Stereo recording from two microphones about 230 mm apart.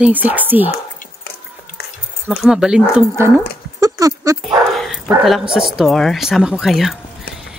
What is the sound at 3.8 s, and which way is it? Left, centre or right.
Speech, centre.